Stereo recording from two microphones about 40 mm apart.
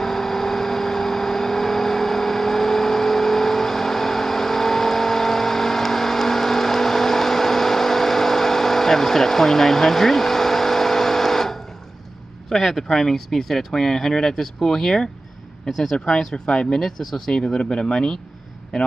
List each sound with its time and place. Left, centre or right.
0.0 s vehicle: centre
12.4 s speech: centre
16.4 s speech: left
16.8 s speech: centre
17.3 s speech: centre